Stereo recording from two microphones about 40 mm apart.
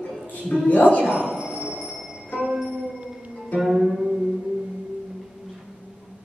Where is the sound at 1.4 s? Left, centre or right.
Right.